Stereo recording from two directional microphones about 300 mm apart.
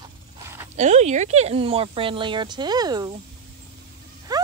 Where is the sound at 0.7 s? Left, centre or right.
Right.